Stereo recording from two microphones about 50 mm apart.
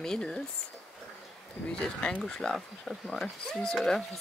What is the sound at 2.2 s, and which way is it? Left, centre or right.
Speech, centre.